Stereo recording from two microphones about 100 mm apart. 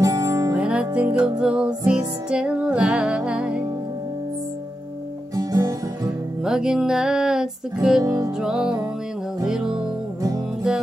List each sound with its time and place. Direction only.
0.0 s music: 35° right (ahead or behind)
0.6 s music: 10° right (ahead or behind)
5.3 s guitar: 35° right (ahead or behind)
6.4 s music: 5° right (ahead or behind)
8.0 s music: 40° right (ahead or behind)
8.4 s music: 5° right (ahead or behind)